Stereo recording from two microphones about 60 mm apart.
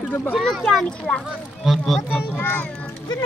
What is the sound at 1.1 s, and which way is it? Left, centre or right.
Speech, centre.